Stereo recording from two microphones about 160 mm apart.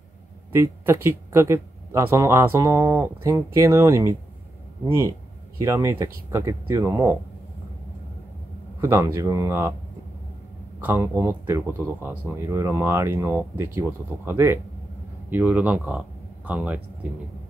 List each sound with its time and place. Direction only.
0.5 s speech: 15° right (ahead or behind)
5.6 s speech: 20° right (ahead or behind)
8.8 s speech: 15° right (ahead or behind)
10.8 s speech: 10° right (ahead or behind)